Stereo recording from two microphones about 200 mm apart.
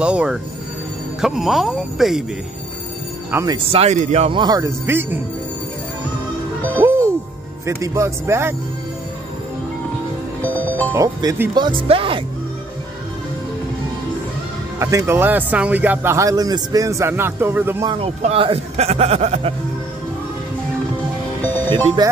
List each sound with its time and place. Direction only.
0.0 s speech: 5° right (ahead or behind)
3.3 s speech: 10° right (ahead or behind)
3.5 s speech: 30° right (ahead or behind); by 5.2 s 10° right (ahead or behind)
6.8 s music: 10° right (ahead or behind)
7.6 s speech: 15° right (ahead or behind)
10.4 s music: 10° left (ahead or behind)
10.9 s speech: 15° right (ahead or behind)
14.8 s speech: 15° right (ahead or behind)
17.8 s a man's voice: 30° right (ahead or behind)
21.4 s music: 10° left (ahead or behind)